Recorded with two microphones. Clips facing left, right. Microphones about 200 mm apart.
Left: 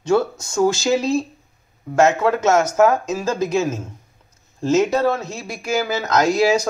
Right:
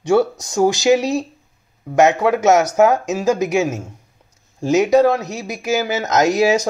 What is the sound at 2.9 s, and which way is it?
Speech, 75° right (ahead or behind).